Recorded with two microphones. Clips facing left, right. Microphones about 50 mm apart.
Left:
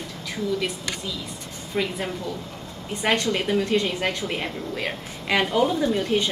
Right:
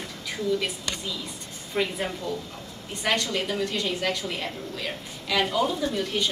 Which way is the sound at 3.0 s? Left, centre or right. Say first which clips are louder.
Left 3 dB; left.